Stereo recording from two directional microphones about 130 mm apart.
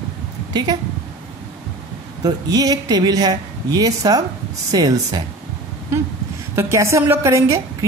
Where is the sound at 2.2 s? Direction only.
30° right (ahead or behind).